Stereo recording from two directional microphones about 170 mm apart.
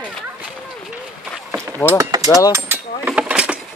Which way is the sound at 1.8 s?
15° left (ahead or behind).